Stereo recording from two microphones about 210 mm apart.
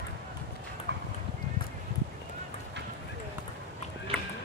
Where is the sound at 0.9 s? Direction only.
55° right (ahead or behind).